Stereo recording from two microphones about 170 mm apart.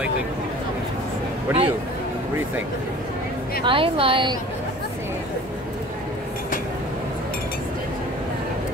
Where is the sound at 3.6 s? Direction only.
30° right (ahead or behind).